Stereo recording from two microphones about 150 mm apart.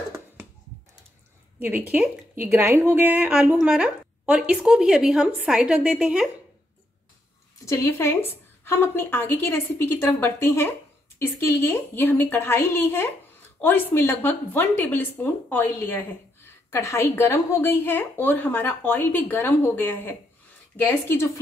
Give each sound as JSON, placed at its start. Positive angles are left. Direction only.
{"t": 1.6, "sound": "a woman's voice", "side_deg": -10}
{"t": 7.6, "sound": "a woman's voice", "side_deg": 20}